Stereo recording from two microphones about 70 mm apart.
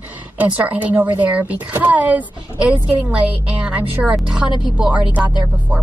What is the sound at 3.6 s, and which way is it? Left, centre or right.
A woman's voice, centre.